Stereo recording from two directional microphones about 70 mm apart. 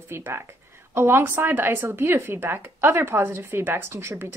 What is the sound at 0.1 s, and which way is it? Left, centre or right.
Speech, right.